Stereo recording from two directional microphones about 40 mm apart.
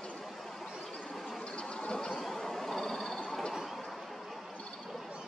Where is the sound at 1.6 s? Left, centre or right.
Left; by 3.1 s centre.